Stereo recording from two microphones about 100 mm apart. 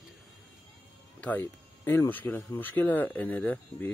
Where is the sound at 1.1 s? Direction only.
15° left (ahead or behind).